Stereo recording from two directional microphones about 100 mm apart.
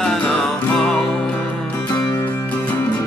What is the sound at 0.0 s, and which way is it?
Music, 10° left (ahead or behind).